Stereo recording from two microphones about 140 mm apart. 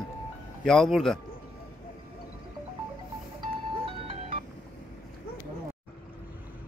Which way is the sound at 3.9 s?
45° right (ahead or behind).